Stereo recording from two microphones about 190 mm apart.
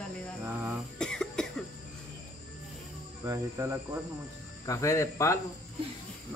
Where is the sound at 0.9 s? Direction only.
5° left (ahead or behind).